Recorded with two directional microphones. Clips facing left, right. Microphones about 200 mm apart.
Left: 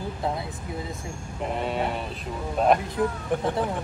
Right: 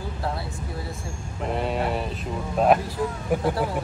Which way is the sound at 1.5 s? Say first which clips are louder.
Right 2 dB; centre (ahead or behind).